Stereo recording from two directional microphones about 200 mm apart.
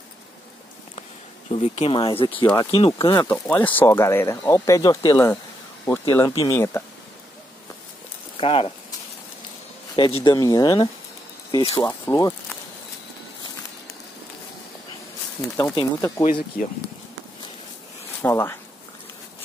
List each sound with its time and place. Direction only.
1.5 s speech: 30° left (ahead or behind)
3.3 s speech: 10° left (ahead or behind)
8.4 s speech: 25° left (ahead or behind)
10.2 s speech: 20° left (ahead or behind)
11.9 s speech: 15° left (ahead or behind)
15.4 s speech: 10° left (ahead or behind)
15.7 s speech: 20° left (ahead or behind)
18.2 s speech: 10° left (ahead or behind)